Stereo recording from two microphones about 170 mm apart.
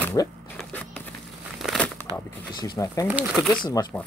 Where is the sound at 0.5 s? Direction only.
10° left (ahead or behind).